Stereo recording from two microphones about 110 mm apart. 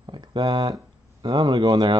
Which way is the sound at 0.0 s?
45° right (ahead or behind).